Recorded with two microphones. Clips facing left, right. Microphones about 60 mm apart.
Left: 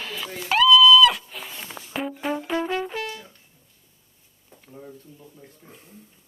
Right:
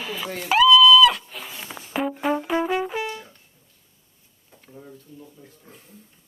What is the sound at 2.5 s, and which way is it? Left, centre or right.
Brass instrument, centre.